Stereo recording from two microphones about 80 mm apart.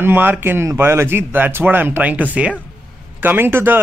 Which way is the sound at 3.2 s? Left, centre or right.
Right.